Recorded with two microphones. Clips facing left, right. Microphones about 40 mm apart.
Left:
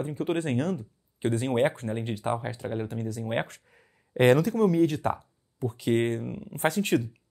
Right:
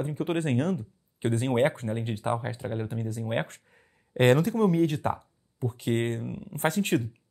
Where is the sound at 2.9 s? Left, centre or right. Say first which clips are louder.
Left 1 dB; centre.